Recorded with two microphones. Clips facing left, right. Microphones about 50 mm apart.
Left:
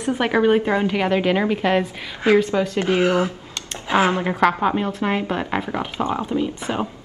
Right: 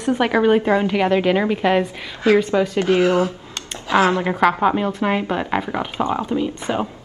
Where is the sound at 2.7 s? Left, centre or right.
Left.